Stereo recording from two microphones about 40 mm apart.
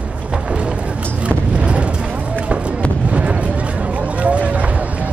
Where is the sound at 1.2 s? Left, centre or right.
Right.